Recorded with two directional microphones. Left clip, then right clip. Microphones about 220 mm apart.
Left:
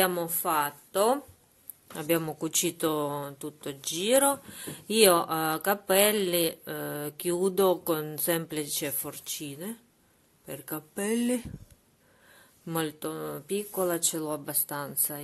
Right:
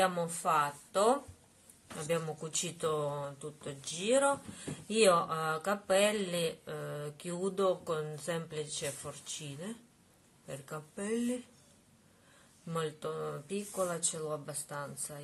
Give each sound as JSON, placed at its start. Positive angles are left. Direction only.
{"t": 0.0, "sound": "speech", "side_deg": 50}
{"t": 12.6, "sound": "speech", "side_deg": 50}